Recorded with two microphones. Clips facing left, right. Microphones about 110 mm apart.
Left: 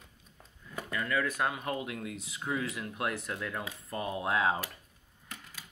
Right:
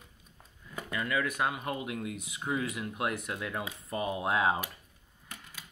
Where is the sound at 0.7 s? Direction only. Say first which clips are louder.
Even; 15° right (ahead or behind).